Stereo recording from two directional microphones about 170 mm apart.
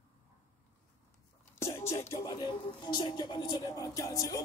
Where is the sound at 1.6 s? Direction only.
15° left (ahead or behind).